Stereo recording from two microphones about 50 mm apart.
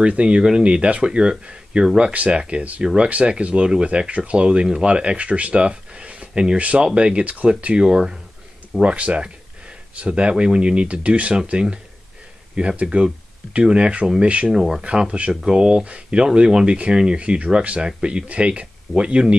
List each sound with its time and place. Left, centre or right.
0.0 s speech: right
8.8 s speech: right
14.5 s speech: centre
14.8 s speech: centre